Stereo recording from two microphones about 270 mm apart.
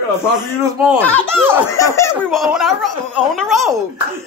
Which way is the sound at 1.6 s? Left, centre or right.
Centre.